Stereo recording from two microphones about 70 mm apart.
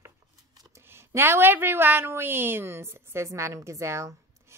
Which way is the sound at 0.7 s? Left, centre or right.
Right.